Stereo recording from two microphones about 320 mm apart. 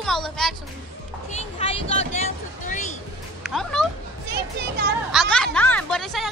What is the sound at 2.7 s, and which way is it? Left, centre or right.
Music, left.